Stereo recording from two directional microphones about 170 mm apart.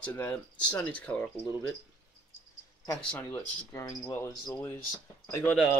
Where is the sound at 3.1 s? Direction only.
10° left (ahead or behind).